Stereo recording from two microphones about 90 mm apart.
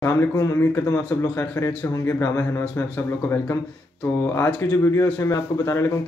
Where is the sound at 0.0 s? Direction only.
30° left (ahead or behind).